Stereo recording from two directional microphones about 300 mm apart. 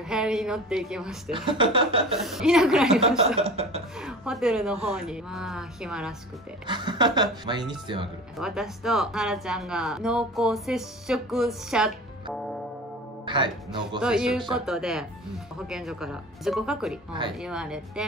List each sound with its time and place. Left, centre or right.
0.1 s speech: centre
1.3 s a woman's voice: centre
2.1 s speech: centre
3.3 s speech: centre
4.0 s speech: centre
6.7 s a woman's voice: centre
8.4 s speech: centre
13.2 s speech: centre
14.0 s speech: centre